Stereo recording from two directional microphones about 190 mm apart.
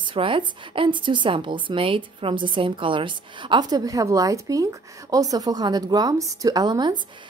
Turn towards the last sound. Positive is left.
turn(degrees=-20)  # may be behind; listen again after turning